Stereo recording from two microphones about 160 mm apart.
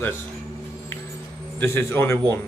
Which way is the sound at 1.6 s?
15° left (ahead or behind).